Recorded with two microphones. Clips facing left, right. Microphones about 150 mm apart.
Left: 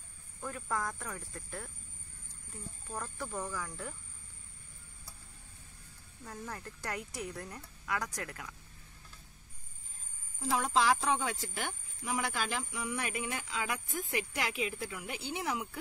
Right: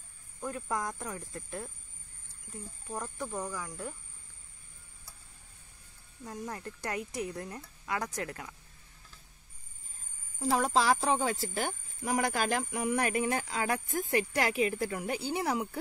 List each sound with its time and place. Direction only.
0.4 s speech: 20° right (ahead or behind)
2.9 s speech: 15° right (ahead or behind)
6.2 s speech: 20° right (ahead or behind)
10.4 s speech: 40° right (ahead or behind)